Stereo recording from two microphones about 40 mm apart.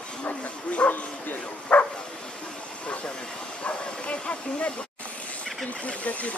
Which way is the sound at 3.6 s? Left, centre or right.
Left.